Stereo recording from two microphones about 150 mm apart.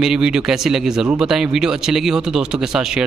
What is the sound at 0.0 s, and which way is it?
A man's voice, 5° right (ahead or behind).